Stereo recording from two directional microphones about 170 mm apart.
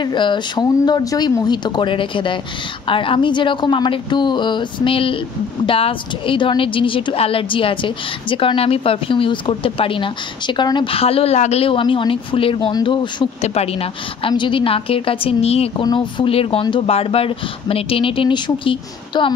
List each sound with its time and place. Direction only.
0.0 s a woman's voice: 25° left (ahead or behind)